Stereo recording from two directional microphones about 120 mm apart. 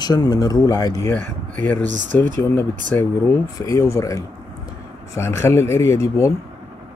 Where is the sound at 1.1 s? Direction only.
10° left (ahead or behind).